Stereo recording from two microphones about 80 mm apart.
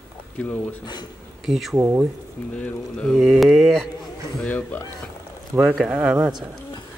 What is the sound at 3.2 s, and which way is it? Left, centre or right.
Speech, centre.